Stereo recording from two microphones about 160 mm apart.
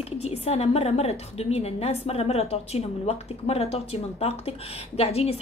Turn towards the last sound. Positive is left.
turn(degrees=40)  # may be behind; listen again after turning